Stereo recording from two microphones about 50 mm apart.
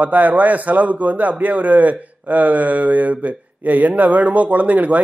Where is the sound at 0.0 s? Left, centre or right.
Right.